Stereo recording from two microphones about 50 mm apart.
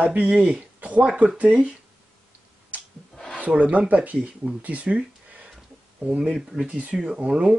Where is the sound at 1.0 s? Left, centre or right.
Centre.